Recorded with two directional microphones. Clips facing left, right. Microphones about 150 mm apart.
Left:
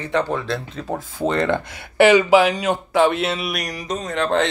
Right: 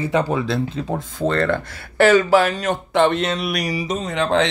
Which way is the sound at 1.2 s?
15° left (ahead or behind).